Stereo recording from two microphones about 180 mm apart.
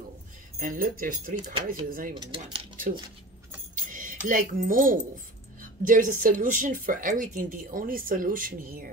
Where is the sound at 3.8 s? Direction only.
50° right (ahead or behind).